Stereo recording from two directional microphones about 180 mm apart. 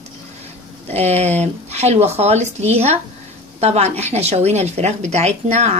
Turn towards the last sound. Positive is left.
turn(degrees=-35)  # may be behind; listen again after turning